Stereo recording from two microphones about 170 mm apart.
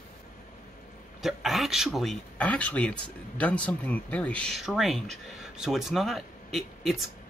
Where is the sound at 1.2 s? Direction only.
Centre (ahead or behind).